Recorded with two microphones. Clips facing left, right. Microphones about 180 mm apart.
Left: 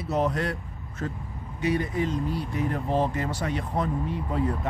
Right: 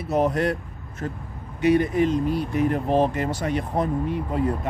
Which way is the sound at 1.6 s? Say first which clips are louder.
Right 7 dB; 70° right (ahead or behind).